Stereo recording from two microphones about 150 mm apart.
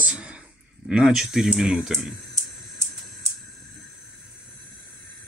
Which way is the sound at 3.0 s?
Centre (ahead or behind).